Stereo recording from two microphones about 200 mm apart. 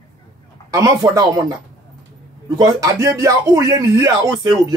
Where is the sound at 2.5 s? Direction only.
15° right (ahead or behind).